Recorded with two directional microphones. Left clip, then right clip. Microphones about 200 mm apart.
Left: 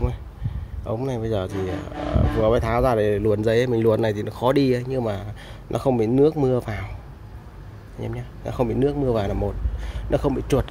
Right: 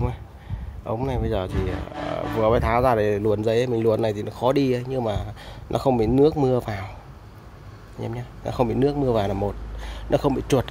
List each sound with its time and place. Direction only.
0.8 s speech: 5° right (ahead or behind)
8.0 s speech: 15° right (ahead or behind)